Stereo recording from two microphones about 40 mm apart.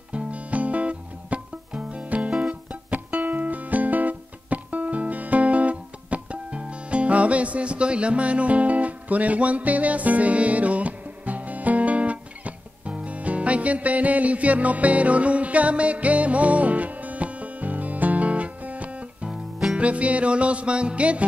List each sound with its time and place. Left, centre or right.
0.1 s music: right